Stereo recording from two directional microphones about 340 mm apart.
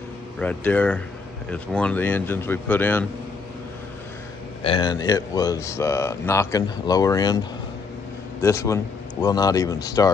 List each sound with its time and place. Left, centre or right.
0.4 s speech: centre
4.6 s speech: centre